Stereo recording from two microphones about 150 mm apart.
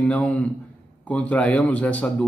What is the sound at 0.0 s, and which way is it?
Speech, 10° left (ahead or behind).